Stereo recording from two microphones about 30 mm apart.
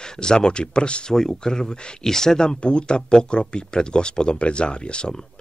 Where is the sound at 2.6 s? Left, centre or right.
Left.